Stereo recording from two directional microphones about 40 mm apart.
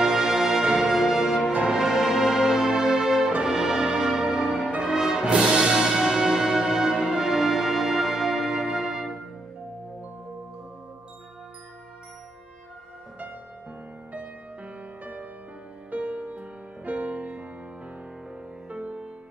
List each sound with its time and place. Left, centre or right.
0.0 s music: centre
15.9 s music: right
18.7 s music: right